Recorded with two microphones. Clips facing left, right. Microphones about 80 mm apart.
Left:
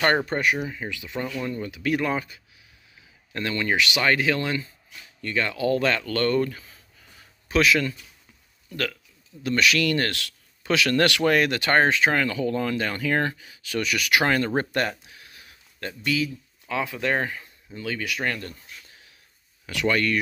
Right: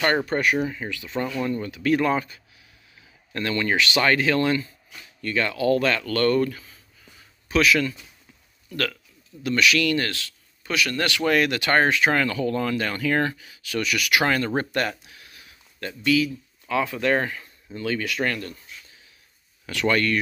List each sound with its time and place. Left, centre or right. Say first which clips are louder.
0.0 s speech: left 1 dB; left
0.3 s speech: right 1 dB; centre
0.6 s speech: right 4 dB; centre
7.4 s speech: right 1 dB; left
9.4 s speech: right 1 dB; left
10.6 s speech: left 4 dB; left
11.2 s speech: even; left
12.1 s speech: right 1 dB; centre; by 15.0 s left
15.0 s a sound: even; left
16.0 s speech: right 5 dB; left
16.6 s speech: right 3 dB; centre
19.6 s speech: right 1 dB; centre